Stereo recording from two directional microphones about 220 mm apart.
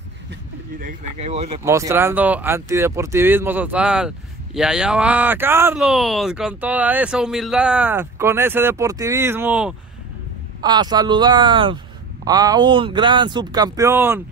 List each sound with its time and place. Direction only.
0.7 s speech: 35° right (ahead or behind)
1.6 s speech: 15° right (ahead or behind)
10.6 s speech: 20° right (ahead or behind)